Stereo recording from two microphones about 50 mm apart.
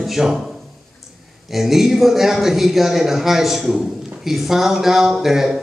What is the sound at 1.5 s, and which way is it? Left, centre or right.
A man's voice, centre.